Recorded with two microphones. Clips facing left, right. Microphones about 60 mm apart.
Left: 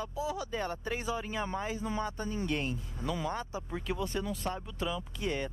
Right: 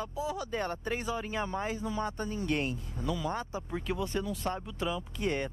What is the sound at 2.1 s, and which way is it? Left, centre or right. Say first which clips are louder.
Speech: even; left.